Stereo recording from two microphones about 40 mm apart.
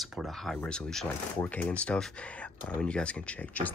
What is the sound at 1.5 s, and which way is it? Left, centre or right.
Speech, left.